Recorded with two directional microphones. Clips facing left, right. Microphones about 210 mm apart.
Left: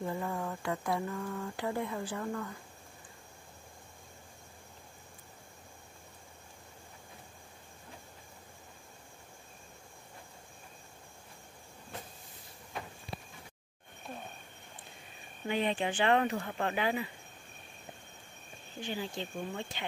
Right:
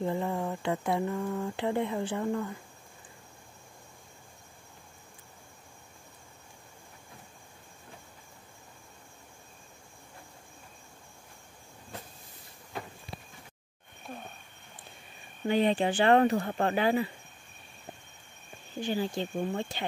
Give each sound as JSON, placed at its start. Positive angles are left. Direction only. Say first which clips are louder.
{"t": 0.0, "sound": "speech", "louder": "right 5 dB", "side_deg": -25}
{"t": 15.4, "sound": "speech", "louder": "right 6 dB", "side_deg": -35}
{"t": 18.8, "sound": "speech", "louder": "right 7 dB", "side_deg": -40}